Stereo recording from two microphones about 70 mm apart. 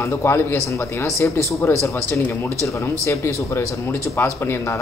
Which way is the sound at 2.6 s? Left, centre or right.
Left.